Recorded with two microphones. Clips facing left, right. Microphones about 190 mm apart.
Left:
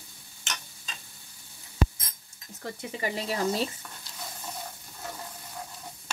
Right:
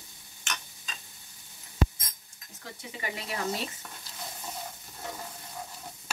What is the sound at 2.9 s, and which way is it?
Speech, 35° left (ahead or behind).